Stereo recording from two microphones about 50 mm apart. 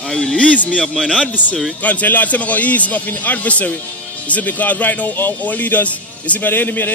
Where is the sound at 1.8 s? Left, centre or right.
Left.